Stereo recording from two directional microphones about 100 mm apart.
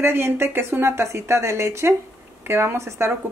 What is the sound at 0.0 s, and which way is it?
Speech, 25° right (ahead or behind).